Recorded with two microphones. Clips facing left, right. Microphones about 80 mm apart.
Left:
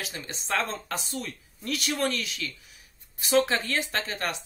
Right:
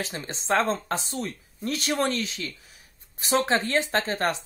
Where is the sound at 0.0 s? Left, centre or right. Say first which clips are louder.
Right 4 dB; right.